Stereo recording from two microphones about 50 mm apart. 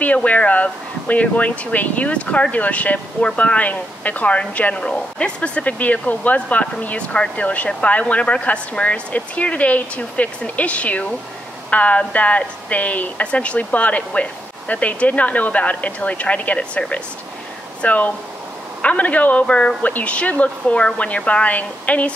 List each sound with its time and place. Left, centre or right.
0.0 s speech: left
19.4 s speech: centre
19.8 s speech: left